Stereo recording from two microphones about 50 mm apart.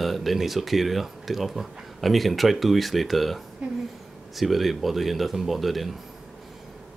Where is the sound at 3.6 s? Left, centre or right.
Right.